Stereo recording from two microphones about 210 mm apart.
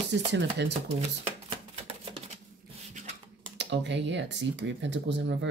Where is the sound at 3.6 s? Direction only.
55° right (ahead or behind).